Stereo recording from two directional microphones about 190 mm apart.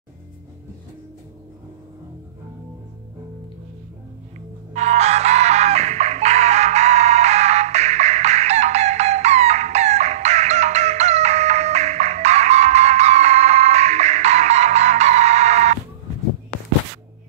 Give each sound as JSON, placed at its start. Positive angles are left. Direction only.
{"t": 4.7, "sound": "music", "side_deg": -35}